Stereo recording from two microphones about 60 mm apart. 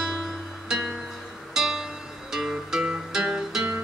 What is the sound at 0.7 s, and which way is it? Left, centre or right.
Music, centre.